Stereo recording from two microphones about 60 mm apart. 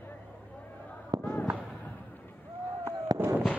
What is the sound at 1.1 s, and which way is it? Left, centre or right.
Fireworks, right.